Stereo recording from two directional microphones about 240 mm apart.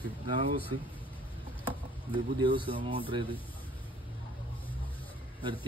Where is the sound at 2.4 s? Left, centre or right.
Right.